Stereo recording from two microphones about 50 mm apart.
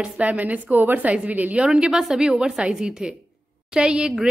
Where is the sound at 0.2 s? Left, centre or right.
Right.